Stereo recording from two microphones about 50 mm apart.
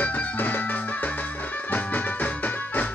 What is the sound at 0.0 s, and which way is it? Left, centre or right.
Music, left.